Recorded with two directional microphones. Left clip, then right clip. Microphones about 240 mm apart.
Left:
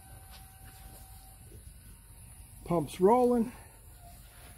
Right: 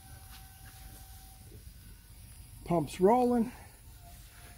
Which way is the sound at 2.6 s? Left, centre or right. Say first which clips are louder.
Left 1 dB; centre.